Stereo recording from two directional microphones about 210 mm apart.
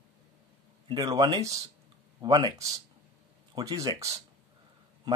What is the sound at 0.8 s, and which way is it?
Speech, 20° right (ahead or behind).